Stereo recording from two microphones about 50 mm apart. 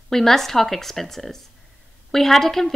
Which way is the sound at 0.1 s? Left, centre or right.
Centre.